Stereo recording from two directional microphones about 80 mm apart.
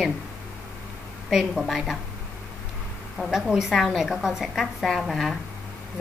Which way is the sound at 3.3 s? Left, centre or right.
Centre.